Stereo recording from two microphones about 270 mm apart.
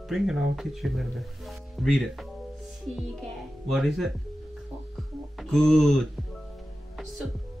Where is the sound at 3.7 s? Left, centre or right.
Centre.